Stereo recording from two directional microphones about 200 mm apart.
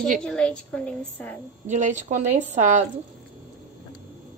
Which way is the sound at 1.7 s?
35° right (ahead or behind).